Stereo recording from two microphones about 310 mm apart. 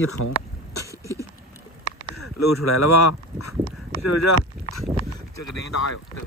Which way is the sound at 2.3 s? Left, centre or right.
Left.